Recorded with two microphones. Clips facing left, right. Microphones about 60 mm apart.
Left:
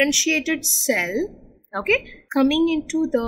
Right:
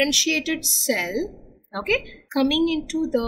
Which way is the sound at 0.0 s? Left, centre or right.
Left.